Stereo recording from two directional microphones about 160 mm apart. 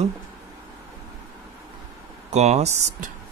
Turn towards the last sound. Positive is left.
turn(degrees=-45)  # may be behind; listen again after turning